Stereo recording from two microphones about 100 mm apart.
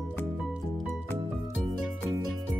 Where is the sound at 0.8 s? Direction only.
15° left (ahead or behind).